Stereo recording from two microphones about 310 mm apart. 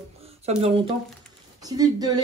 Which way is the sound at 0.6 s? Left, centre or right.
Centre.